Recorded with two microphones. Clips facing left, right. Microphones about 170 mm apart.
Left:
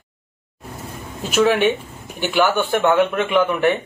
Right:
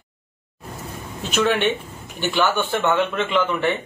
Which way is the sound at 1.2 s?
10° left (ahead or behind).